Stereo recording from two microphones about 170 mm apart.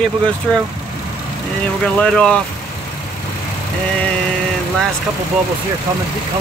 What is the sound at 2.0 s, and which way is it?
Speech, 5° left (ahead or behind).